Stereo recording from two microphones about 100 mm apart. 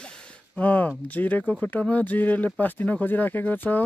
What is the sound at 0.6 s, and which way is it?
Speech, 15° left (ahead or behind).